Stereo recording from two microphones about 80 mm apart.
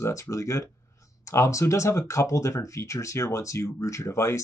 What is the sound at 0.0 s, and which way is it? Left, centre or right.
Speech, left.